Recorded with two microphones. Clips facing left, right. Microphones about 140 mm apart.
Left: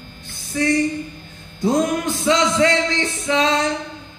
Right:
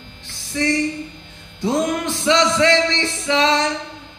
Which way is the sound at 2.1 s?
25° right (ahead or behind).